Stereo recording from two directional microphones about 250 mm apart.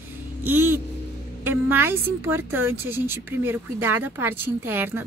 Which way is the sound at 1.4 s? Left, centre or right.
Centre.